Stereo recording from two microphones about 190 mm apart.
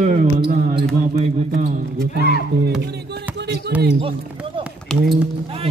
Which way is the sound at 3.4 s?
70° right (ahead or behind).